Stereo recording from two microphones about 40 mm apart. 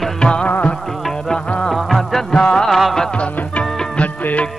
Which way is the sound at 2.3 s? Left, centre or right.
Left.